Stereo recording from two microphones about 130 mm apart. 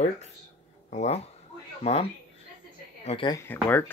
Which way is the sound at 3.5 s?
15° left (ahead or behind).